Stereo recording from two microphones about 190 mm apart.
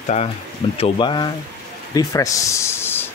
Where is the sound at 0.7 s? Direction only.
25° left (ahead or behind); by 3.0 s 10° left (ahead or behind).